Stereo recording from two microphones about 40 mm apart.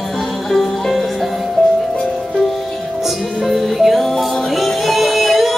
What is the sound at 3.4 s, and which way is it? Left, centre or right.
Music, centre.